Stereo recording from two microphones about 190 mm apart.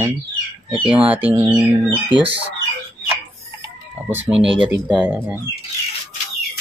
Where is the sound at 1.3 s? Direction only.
25° right (ahead or behind).